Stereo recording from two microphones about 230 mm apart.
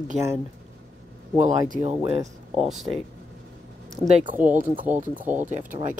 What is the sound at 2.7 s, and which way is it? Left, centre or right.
Speech, centre.